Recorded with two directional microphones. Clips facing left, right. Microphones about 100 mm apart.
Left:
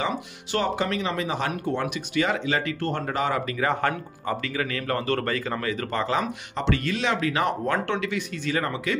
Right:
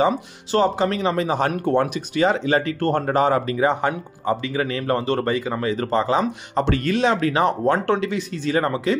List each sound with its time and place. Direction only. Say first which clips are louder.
0.0 s speech: right 8 dB; 30° right (ahead or behind)
2.1 s speech: right 6 dB; 30° right (ahead or behind)
6.5 s speech: right 5 dB; 40° right (ahead or behind)